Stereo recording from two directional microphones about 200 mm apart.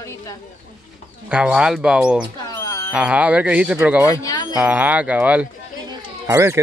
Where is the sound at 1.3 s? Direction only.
5° right (ahead or behind).